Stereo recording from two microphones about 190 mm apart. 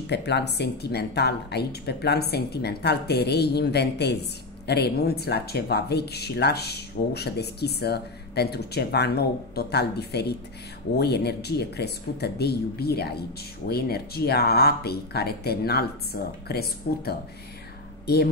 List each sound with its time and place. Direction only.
0.0 s speech: 60° left (ahead or behind)